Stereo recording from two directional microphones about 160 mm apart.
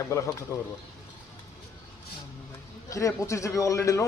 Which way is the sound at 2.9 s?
20° left (ahead or behind).